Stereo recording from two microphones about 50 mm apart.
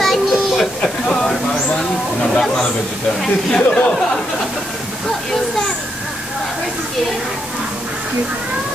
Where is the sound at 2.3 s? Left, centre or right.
Centre.